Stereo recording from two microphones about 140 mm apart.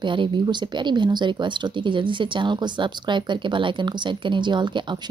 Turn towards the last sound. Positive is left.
turn(degrees=-35)  # may be behind; listen again after turning